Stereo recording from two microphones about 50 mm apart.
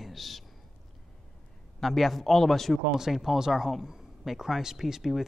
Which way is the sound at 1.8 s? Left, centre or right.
Centre.